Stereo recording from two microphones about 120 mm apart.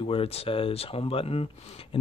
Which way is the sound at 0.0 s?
50° left (ahead or behind).